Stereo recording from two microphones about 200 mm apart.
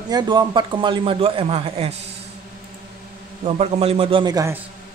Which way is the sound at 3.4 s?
30° right (ahead or behind).